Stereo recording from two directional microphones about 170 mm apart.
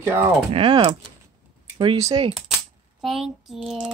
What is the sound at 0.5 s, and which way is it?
Speech, 30° right (ahead or behind).